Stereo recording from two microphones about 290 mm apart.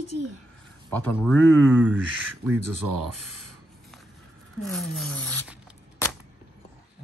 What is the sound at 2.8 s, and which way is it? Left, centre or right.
Speech, right.